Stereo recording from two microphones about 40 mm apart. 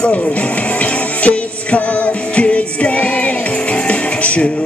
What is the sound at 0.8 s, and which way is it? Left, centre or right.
Music, left.